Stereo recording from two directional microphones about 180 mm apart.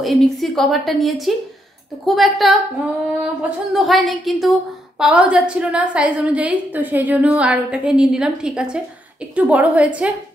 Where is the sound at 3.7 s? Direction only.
Centre (ahead or behind).